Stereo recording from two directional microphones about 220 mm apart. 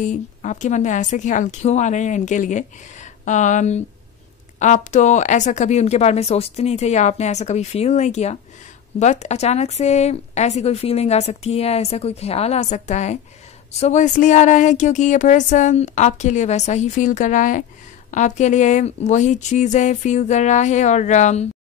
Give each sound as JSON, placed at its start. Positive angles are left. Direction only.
{"t": 0.0, "sound": "a woman's voice", "side_deg": 35}